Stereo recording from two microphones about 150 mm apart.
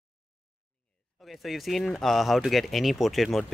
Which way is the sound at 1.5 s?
Centre (ahead or behind).